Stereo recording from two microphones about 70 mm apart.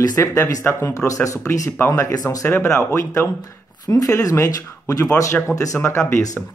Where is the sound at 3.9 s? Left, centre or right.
Left.